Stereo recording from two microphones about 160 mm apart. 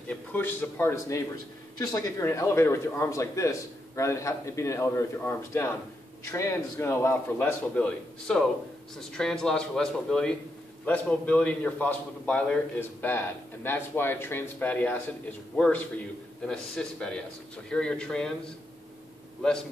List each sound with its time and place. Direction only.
0.1 s a man's voice: 10° left (ahead or behind)